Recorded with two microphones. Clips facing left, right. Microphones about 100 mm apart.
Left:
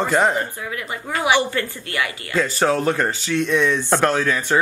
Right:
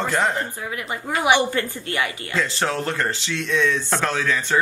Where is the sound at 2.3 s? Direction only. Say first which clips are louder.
Left 5 dB; 10° left (ahead or behind).